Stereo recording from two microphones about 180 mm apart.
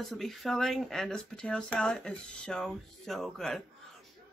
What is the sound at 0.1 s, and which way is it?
A woman's voice, centre (ahead or behind).